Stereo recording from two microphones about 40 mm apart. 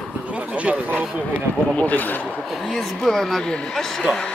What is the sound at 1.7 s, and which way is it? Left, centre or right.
Speech, left.